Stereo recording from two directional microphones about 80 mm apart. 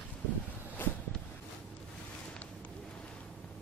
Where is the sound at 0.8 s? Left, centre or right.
Left.